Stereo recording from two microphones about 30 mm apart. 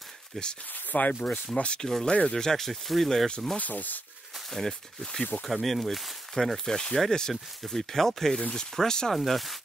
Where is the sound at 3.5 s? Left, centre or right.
Left.